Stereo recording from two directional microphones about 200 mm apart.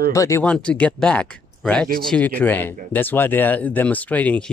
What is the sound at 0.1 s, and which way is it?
Speech, 15° left (ahead or behind).